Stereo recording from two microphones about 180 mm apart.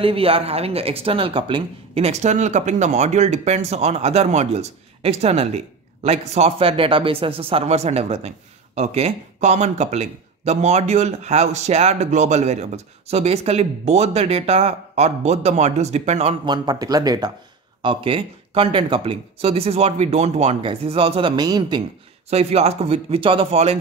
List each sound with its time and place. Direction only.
0.0 s speech: 30° right (ahead or behind)
16.4 s speech: 25° right (ahead or behind)
22.3 s speech: 35° right (ahead or behind)